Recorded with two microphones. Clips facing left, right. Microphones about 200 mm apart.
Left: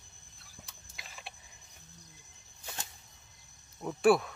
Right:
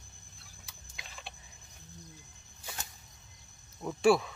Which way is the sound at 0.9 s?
5° left (ahead or behind).